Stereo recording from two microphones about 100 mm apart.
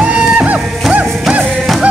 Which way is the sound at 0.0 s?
10° right (ahead or behind).